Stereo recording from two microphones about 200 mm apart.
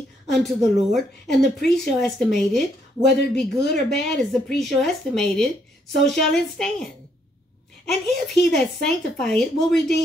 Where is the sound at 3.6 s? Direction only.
55° left (ahead or behind).